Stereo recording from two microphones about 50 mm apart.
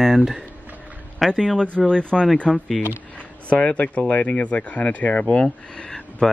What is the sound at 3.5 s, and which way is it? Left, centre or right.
Speech, left.